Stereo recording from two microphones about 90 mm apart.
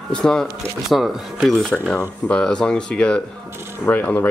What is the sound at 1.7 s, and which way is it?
Speech, 10° left (ahead or behind).